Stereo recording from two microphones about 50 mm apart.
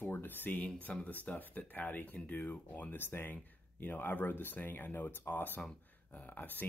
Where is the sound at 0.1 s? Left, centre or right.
Left.